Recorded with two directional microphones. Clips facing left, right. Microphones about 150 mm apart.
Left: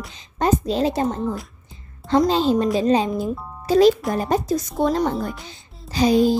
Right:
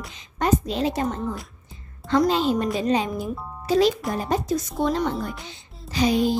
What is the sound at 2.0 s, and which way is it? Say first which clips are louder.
A woman's voice: left 3 dB; 30° left (ahead or behind).